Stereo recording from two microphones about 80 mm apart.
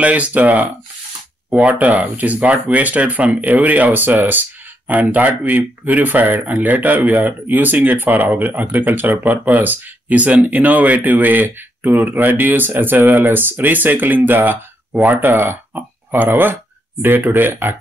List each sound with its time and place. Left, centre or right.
0.0 s speech: centre